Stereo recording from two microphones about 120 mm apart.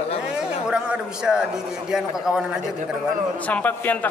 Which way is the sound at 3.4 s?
10° left (ahead or behind).